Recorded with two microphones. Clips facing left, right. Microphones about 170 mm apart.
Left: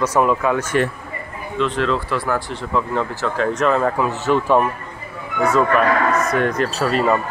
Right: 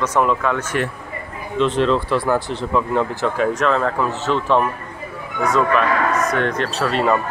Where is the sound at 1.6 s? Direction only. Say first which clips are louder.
Right 3 dB; 25° right (ahead or behind).